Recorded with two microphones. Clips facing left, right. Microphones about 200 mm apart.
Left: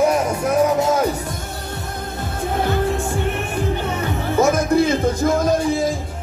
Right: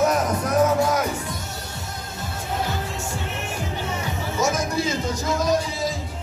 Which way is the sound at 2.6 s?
55° left (ahead or behind).